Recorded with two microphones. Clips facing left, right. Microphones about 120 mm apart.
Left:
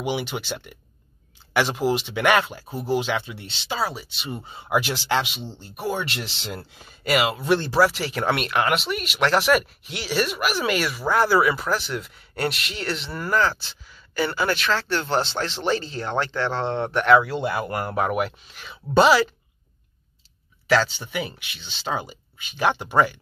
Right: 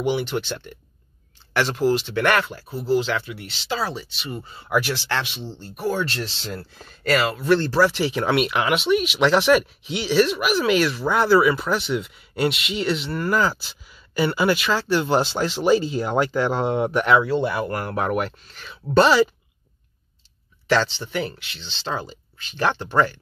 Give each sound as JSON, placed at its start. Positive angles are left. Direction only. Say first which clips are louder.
{"t": 0.0, "sound": "speech", "louder": "right 4 dB", "side_deg": 10}
{"t": 3.8, "sound": "speech", "louder": "even", "side_deg": 10}
{"t": 4.2, "sound": "speech", "louder": "right 1 dB", "side_deg": 20}
{"t": 7.9, "sound": "speech", "louder": "right 3 dB", "side_deg": 0}
{"t": 20.7, "sound": "speech", "louder": "even", "side_deg": 5}